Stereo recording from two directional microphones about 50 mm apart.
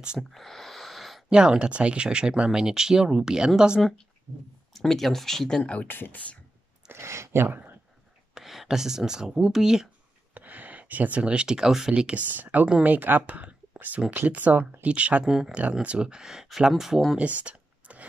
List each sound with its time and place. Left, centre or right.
0.3 s a sound: centre
1.3 s speech: centre
4.7 s speech: centre
5.6 s speech: left
5.9 s speech: left
6.9 s a sound: right
7.4 s speech: right
8.4 s speech: centre
10.3 s speech: right; by 11.9 s centre
11.9 s speech: right
12.3 s speech: right
15.2 s speech: centre
15.8 s speech: right
17.2 s a sound: right